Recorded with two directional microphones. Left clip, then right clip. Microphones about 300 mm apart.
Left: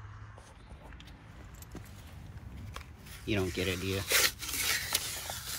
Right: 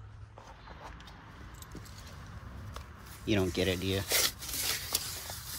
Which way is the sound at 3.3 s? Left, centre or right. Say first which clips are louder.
Right 3 dB; centre.